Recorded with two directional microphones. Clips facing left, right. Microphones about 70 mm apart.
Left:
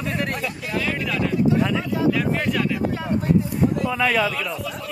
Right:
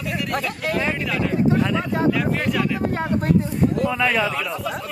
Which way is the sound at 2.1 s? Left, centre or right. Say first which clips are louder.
Even; centre.